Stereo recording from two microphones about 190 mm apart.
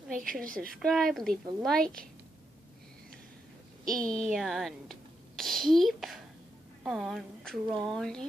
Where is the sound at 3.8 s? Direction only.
45° right (ahead or behind).